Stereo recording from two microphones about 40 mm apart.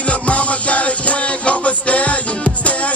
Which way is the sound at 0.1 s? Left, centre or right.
Left.